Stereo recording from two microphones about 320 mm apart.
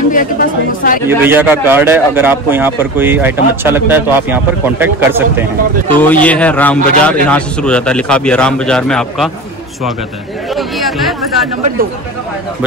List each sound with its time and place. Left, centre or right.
0.1 s speech: left
1.0 s a man's voice: centre
5.9 s a man's voice: centre
10.5 s a sound: centre